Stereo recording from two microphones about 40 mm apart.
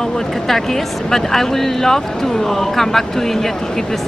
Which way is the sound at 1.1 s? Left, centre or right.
Centre.